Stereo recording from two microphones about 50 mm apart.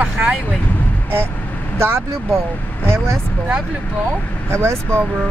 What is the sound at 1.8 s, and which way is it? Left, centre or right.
Speech, right.